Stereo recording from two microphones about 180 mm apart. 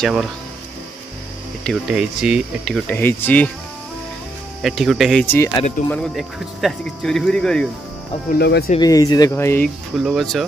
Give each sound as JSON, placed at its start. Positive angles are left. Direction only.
{"t": 0.0, "sound": "speech", "side_deg": 0}
{"t": 1.6, "sound": "speech", "side_deg": 0}
{"t": 4.6, "sound": "speech", "side_deg": 0}
{"t": 5.2, "sound": "speech", "side_deg": 15}
{"t": 5.9, "sound": "speech", "side_deg": 0}
{"t": 8.3, "sound": "speech", "side_deg": 65}
{"t": 8.6, "sound": "speech", "side_deg": 25}
{"t": 9.9, "sound": "speech", "side_deg": 0}